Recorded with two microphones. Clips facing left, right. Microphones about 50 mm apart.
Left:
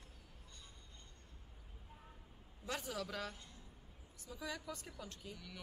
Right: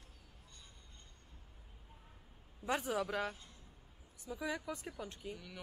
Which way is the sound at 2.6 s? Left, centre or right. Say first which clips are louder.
Right 7 dB; right.